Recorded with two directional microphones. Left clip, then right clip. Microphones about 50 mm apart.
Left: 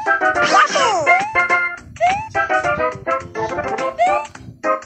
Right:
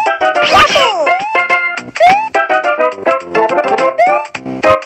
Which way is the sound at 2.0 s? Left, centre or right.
Centre.